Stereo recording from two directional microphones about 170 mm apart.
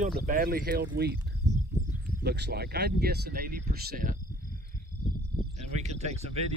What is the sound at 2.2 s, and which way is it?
Speech, 70° right (ahead or behind).